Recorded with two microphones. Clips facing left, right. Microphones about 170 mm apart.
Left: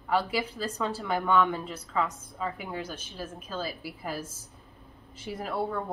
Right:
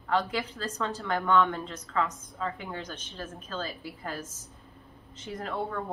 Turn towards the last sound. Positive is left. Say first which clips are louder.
# left 2 dB
turn(degrees=10)  # may be behind; listen again after turning